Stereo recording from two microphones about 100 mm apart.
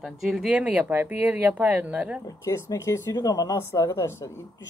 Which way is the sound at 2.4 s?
30° left (ahead or behind).